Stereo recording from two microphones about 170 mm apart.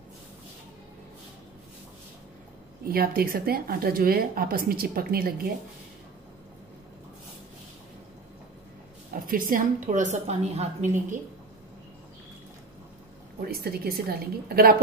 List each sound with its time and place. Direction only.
2.9 s speech: 60° right (ahead or behind)
9.3 s a woman's voice: 50° right (ahead or behind)
13.4 s speech: 65° right (ahead or behind)